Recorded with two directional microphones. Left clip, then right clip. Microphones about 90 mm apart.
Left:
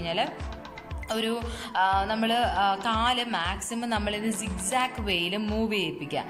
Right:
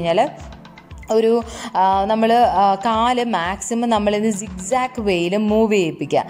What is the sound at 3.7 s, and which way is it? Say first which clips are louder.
A woman's voice: right 14 dB; 55° right (ahead or behind).